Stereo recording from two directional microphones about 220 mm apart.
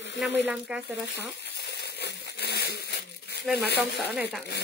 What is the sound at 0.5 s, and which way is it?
Speech, 5° right (ahead or behind).